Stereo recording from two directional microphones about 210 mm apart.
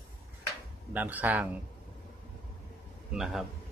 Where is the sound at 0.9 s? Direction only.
10° right (ahead or behind).